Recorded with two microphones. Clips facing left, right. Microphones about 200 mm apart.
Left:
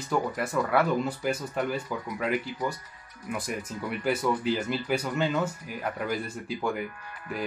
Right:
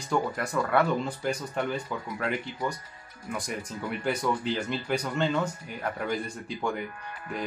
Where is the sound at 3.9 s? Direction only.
5° left (ahead or behind).